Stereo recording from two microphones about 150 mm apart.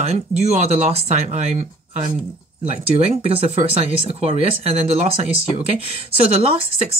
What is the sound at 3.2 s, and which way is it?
Speech, 40° right (ahead or behind).